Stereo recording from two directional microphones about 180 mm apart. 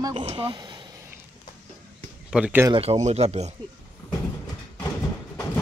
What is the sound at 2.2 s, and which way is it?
Speech, 5° right (ahead or behind).